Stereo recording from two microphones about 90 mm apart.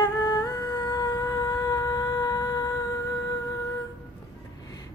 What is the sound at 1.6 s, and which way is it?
Shofar, 45° left (ahead or behind).